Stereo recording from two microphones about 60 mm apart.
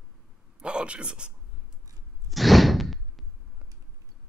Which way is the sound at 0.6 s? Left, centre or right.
Centre.